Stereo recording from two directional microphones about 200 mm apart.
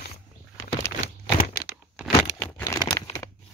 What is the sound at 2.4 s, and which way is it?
Crumpling, 15° left (ahead or behind).